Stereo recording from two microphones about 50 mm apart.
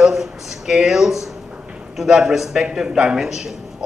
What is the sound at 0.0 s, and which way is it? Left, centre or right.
A man's voice, centre.